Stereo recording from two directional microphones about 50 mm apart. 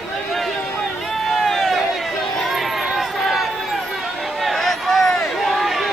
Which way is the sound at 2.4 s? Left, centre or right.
Centre.